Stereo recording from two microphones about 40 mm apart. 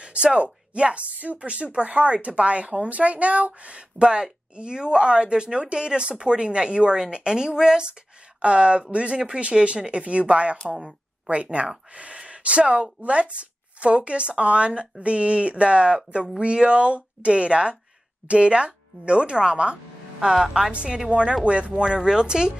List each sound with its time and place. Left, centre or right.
0.0 s a woman's voice: right
20.7 s a woman's voice: right